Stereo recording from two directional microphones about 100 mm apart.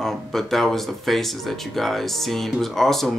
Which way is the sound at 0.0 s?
5° left (ahead or behind).